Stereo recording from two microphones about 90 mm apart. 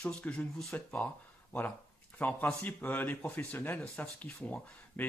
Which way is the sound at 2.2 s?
15° left (ahead or behind).